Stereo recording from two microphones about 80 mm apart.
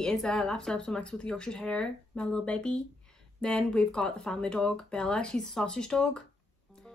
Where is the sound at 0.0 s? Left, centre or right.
Centre.